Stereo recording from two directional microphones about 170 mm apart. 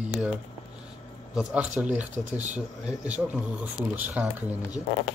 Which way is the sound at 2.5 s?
5° right (ahead or behind).